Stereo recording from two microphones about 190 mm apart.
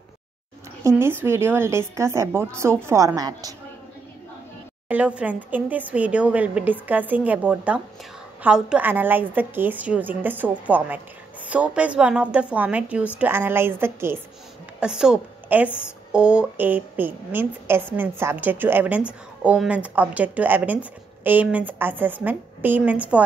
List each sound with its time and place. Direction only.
0.8 s a woman's voice: 10° right (ahead or behind)
4.8 s a woman's voice: 5° right (ahead or behind)